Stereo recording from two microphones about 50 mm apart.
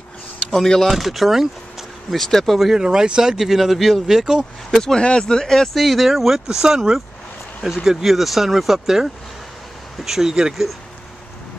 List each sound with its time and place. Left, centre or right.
0.5 s speech: centre
2.1 s speech: centre
2.6 s speech: centre
4.6 s speech: centre
5.8 s speech: centre